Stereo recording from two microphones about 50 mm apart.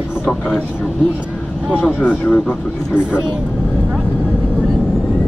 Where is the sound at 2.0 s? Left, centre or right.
Left.